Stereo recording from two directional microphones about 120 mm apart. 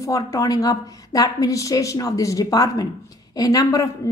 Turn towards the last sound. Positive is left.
turn(degrees=30)  # may be behind; listen again after turning